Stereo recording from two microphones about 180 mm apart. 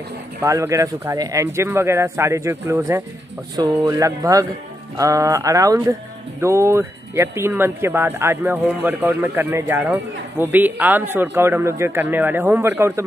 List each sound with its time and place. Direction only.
0.4 s speech: 15° right (ahead or behind)
3.5 s a sound: 20° right (ahead or behind)
4.9 s speech: 20° right (ahead or behind)